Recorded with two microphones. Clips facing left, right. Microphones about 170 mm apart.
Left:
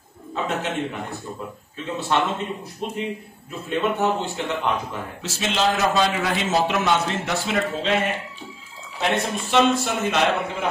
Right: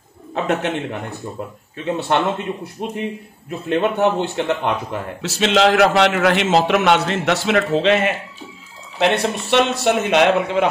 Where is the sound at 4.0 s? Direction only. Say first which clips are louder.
Right 5 dB; 65° right (ahead or behind).